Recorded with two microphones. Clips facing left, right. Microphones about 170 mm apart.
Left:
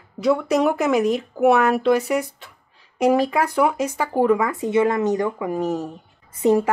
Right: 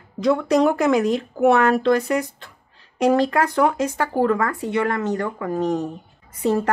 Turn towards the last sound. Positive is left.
turn(degrees=20)  # may be behind; listen again after turning